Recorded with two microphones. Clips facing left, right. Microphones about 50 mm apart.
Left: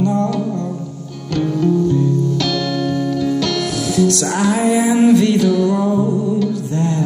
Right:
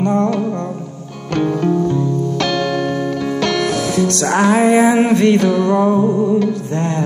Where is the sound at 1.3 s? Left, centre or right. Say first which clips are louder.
Right 1 dB; right.